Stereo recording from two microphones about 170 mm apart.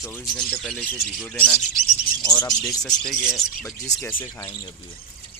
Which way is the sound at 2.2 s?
20° left (ahead or behind).